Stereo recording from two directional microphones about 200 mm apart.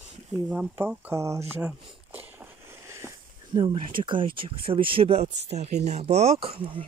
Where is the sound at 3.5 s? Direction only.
25° right (ahead or behind).